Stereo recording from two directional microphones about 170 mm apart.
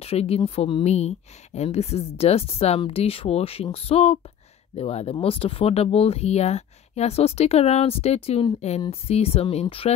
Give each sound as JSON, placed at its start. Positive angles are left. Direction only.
{"t": 0.0, "sound": "speech", "side_deg": 35}